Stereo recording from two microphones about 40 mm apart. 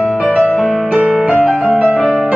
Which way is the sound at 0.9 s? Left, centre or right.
Right.